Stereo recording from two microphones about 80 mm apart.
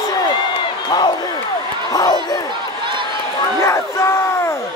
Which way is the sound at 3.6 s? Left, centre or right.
Left.